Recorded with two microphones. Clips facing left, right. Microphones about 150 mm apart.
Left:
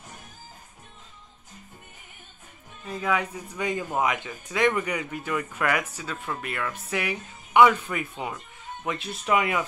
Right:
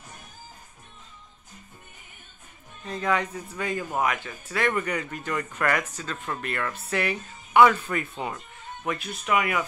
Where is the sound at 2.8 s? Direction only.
5° left (ahead or behind).